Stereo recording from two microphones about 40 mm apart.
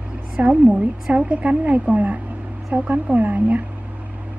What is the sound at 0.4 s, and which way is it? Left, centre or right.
Speech, right.